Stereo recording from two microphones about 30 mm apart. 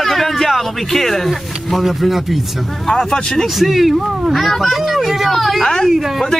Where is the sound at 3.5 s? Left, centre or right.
Centre.